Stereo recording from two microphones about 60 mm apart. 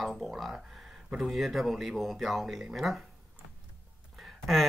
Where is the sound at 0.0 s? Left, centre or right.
Centre.